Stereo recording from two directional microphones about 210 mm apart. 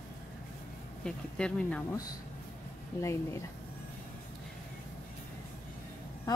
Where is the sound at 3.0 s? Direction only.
15° left (ahead or behind).